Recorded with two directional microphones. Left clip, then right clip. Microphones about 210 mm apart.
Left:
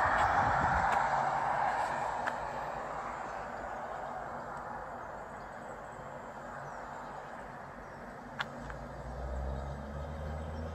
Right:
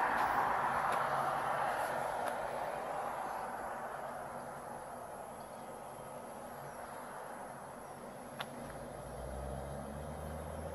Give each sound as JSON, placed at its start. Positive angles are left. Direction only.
{"t": 0.0, "sound": "vehicle", "side_deg": 45}